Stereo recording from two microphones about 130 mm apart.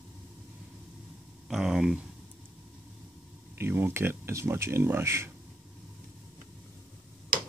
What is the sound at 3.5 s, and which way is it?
Speech, 15° right (ahead or behind).